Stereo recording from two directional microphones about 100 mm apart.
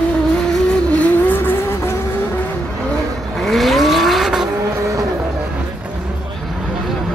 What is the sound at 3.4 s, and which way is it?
Vehicle, centre (ahead or behind).